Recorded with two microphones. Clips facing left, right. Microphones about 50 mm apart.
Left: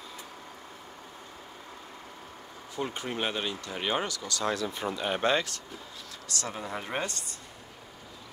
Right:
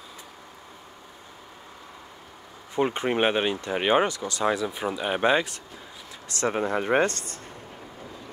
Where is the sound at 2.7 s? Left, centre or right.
Right.